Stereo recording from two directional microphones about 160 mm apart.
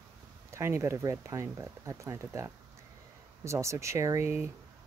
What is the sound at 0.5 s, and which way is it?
Speech, 15° right (ahead or behind).